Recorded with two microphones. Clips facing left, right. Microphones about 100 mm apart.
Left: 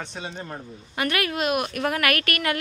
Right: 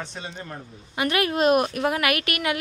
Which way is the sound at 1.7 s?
20° right (ahead or behind).